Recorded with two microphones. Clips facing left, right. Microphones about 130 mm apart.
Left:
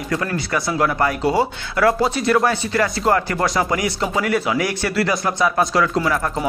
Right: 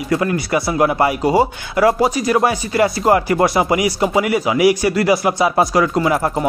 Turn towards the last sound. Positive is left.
turn(degrees=-10)  # may be behind; listen again after turning